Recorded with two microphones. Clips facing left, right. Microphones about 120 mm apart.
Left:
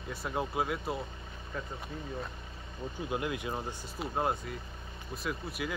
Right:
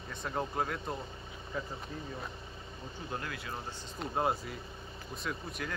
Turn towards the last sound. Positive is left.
turn(degrees=5)  # may be behind; listen again after turning